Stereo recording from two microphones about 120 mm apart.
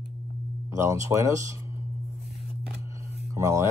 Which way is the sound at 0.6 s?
25° right (ahead or behind).